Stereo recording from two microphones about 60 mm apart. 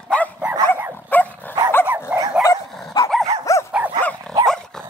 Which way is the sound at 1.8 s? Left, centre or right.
Right.